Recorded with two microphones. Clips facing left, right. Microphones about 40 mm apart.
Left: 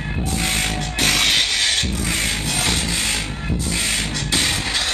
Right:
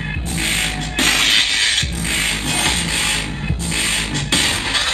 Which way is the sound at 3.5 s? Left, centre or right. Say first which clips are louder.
Right 2 dB; right.